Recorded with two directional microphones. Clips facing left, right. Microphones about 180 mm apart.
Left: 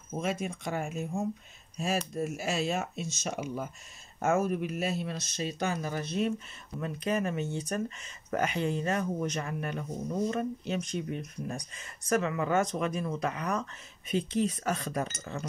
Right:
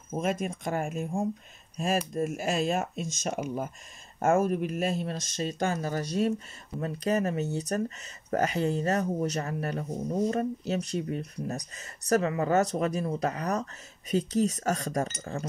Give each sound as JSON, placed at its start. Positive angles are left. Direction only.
{"t": 0.1, "sound": "speech", "side_deg": -50}